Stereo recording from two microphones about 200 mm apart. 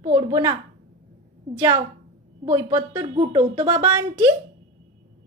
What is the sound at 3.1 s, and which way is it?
Speech, 25° right (ahead or behind).